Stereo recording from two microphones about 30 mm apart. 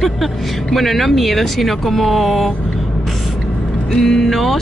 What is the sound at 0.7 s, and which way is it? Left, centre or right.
Speech, centre.